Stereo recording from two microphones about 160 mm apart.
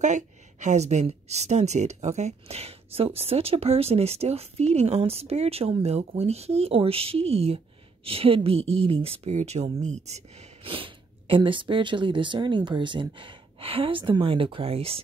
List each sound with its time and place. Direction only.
0.0 s a woman's voice: 50° right (ahead or behind)